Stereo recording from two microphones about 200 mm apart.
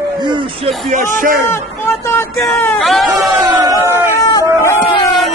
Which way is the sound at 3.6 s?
10° right (ahead or behind).